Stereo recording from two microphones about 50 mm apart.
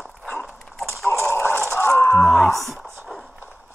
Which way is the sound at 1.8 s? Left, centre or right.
Left.